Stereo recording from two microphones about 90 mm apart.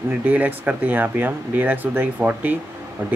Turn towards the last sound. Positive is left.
turn(degrees=-20)  # may be behind; listen again after turning